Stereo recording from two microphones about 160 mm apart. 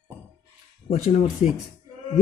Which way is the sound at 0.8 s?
45° left (ahead or behind).